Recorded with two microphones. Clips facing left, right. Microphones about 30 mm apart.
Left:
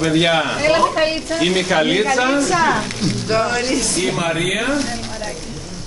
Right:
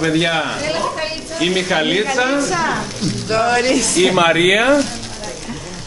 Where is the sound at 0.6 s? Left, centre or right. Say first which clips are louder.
Left 5 dB; left.